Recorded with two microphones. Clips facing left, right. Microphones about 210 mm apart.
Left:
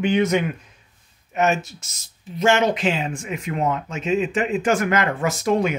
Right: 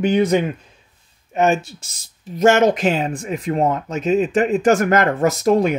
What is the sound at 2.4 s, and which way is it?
Speech, 45° right (ahead or behind).